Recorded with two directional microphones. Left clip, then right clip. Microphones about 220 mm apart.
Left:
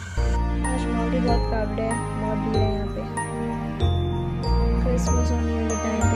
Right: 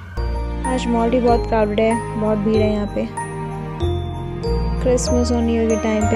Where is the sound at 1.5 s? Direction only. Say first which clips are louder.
Right 10 dB; 35° right (ahead or behind).